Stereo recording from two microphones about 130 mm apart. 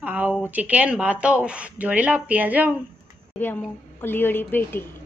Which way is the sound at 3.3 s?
15° left (ahead or behind).